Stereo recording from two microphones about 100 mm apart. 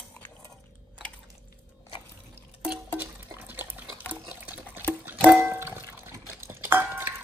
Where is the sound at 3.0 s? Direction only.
20° right (ahead or behind).